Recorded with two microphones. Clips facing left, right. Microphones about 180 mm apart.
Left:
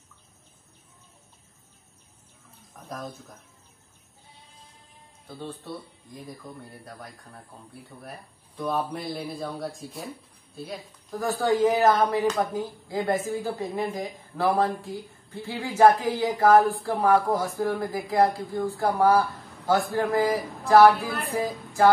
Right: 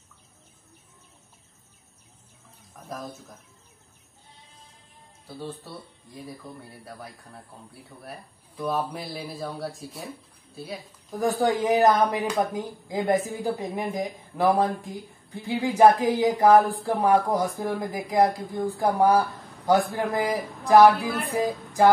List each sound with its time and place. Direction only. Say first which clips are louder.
2.9 s speech: even; centre (ahead or behind)
5.7 s speech: left 4 dB; 5° right (ahead or behind)
11.1 s speech: even; 15° right (ahead or behind)